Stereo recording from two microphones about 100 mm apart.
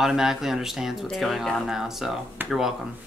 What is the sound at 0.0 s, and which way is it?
Speech, 5° right (ahead or behind).